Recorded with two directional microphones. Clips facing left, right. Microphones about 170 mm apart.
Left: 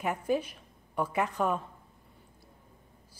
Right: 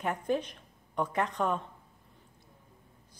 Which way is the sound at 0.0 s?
5° left (ahead or behind).